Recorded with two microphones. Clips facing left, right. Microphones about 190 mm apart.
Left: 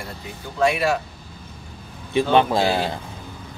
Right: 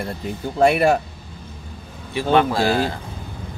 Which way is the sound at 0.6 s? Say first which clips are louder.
Right 4 dB; 50° right (ahead or behind).